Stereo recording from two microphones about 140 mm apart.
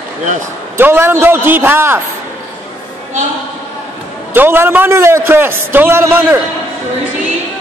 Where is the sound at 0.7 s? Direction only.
15° right (ahead or behind).